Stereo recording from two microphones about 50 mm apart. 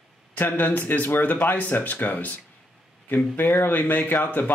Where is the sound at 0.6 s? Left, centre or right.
Left.